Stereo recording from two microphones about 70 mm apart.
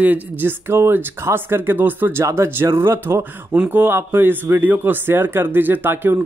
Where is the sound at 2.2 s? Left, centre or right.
Right.